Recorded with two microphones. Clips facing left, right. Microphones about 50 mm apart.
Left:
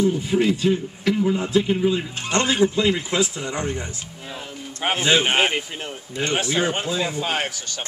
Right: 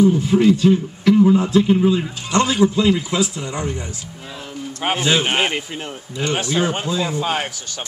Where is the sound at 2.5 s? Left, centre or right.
Centre.